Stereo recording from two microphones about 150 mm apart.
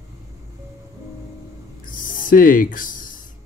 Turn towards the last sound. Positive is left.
turn(degrees=65)  # may be behind; listen again after turning